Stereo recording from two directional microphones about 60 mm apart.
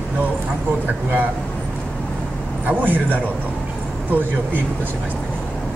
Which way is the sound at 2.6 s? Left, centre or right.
Right.